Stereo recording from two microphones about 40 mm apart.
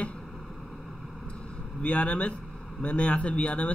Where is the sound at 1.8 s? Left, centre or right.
Left.